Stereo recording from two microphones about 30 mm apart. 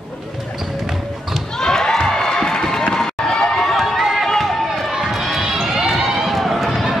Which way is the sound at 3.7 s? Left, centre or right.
Centre.